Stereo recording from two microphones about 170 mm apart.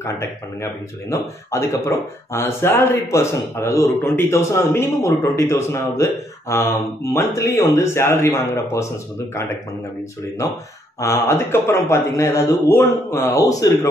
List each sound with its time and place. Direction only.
0.0 s speech: 15° left (ahead or behind)
11.0 s a man's voice: 15° left (ahead or behind)